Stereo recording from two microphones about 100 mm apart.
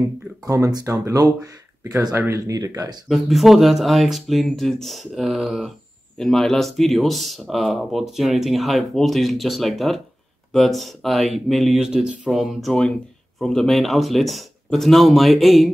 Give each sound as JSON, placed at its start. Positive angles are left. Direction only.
{"t": 0.5, "sound": "speech", "side_deg": -40}
{"t": 3.1, "sound": "speech", "side_deg": 0}